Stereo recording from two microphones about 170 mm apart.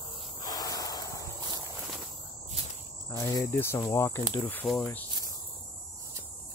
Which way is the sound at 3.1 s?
20° left (ahead or behind).